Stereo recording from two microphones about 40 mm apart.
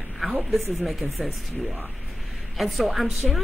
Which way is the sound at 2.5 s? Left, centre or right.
Centre.